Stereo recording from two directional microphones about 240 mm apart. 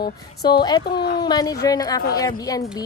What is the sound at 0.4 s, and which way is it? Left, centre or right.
A woman's voice, centre.